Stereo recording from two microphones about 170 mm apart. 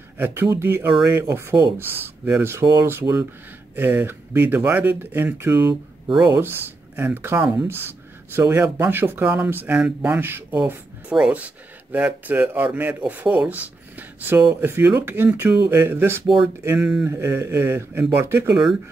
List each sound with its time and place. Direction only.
0.2 s speech: 15° right (ahead or behind)